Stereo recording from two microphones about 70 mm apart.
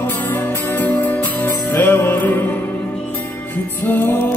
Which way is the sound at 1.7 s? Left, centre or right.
Left.